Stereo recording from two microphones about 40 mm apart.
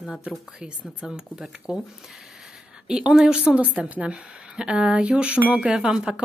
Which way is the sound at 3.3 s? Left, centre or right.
Right.